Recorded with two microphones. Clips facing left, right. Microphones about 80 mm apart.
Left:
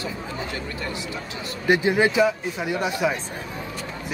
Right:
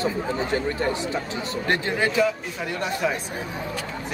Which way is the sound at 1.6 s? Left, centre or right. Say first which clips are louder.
Left 5 dB; centre.